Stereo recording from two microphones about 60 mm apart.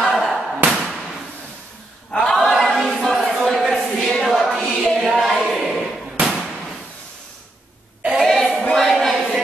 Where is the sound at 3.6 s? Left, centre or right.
Centre.